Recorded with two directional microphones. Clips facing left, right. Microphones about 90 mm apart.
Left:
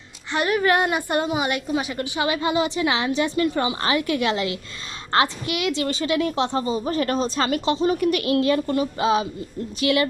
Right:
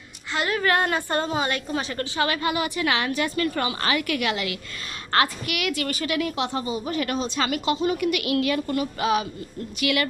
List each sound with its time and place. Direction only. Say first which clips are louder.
0.3 s a woman's voice: left 3 dB; 20° left (ahead or behind)